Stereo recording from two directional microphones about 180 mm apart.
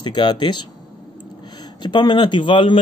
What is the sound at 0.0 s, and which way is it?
A man's voice, 25° left (ahead or behind).